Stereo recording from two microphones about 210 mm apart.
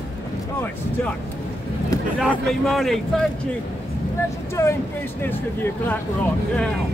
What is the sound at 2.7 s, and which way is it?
Speech, centre (ahead or behind).